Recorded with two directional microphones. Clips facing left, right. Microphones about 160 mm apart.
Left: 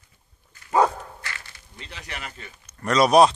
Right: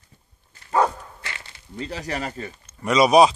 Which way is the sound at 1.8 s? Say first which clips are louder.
Right 10 dB; 40° right (ahead or behind).